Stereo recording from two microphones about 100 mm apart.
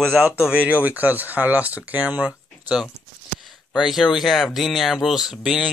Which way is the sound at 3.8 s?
5° right (ahead or behind).